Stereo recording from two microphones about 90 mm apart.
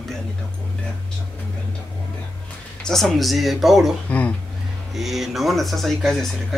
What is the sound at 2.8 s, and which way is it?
Speech, 5° left (ahead or behind).